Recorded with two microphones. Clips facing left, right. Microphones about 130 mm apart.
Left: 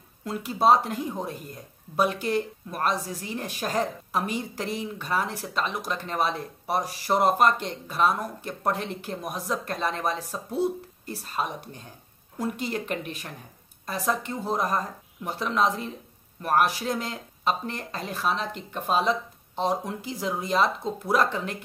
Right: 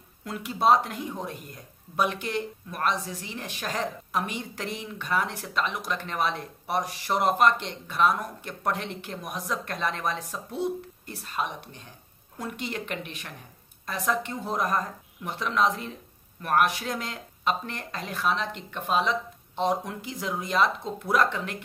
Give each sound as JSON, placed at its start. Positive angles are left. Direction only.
{"t": 0.2, "sound": "a woman's voice", "side_deg": 30}